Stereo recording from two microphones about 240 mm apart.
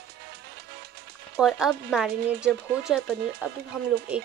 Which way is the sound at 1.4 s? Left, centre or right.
Centre.